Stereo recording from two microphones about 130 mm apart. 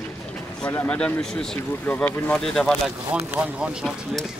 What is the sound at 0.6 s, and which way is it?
Speech, 10° left (ahead or behind).